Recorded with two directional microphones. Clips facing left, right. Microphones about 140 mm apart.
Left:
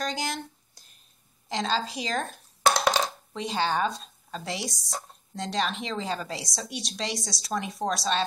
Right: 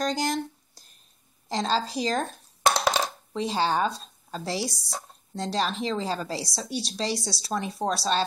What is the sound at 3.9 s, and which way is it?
Speech, centre (ahead or behind).